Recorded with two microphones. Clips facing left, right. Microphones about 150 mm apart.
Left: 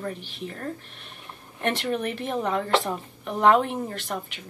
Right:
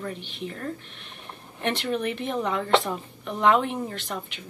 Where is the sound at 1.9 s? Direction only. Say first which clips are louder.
Even; 40° left (ahead or behind).